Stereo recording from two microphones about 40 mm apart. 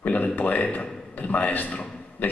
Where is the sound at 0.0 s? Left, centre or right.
Left.